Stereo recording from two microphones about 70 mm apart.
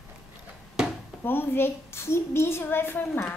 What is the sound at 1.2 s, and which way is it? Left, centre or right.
A woman's voice, left.